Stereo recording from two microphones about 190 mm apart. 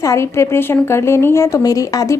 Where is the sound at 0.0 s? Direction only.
15° left (ahead or behind).